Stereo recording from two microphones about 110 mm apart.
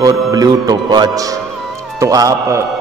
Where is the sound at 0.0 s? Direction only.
35° right (ahead or behind).